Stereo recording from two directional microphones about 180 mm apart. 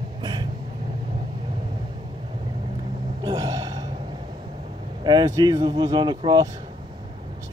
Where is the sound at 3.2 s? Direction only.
20° right (ahead or behind).